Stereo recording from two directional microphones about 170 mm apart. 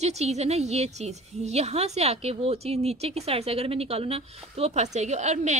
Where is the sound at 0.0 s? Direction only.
40° right (ahead or behind).